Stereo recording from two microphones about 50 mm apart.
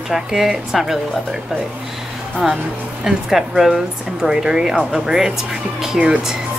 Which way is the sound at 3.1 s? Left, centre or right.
Centre.